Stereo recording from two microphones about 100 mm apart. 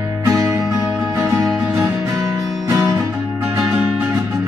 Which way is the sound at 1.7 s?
25° right (ahead or behind).